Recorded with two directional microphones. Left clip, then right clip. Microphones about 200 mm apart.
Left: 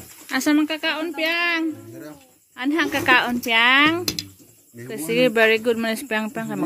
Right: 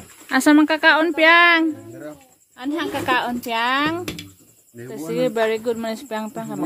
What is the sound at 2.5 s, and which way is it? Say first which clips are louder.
Speech: left 3 dB; 10° left (ahead or behind).